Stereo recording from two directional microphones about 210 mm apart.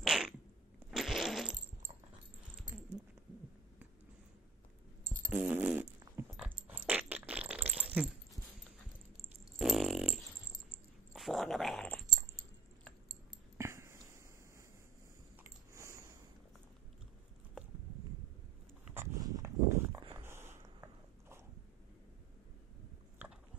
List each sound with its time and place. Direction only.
0.0 s cat: centre (ahead or behind)
0.9 s a sound: centre (ahead or behind)
5.3 s dog: 5° right (ahead or behind)
9.6 s dog: centre (ahead or behind)
11.1 s cat: centre (ahead or behind)
13.6 s a sound: 15° right (ahead or behind)
15.7 s a sound: 15° right (ahead or behind)
18.9 s dog: 15° right (ahead or behind)
20.2 s biting: 10° right (ahead or behind)